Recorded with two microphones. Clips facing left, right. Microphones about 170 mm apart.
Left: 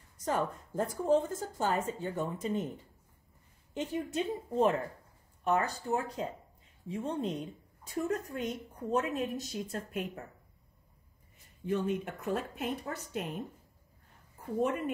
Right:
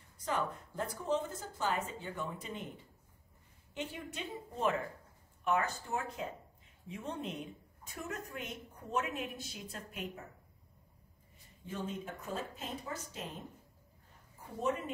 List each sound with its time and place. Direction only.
0.2 s a woman's voice: 45° left (ahead or behind)
3.7 s a woman's voice: 40° left (ahead or behind)
11.6 s a woman's voice: 65° left (ahead or behind)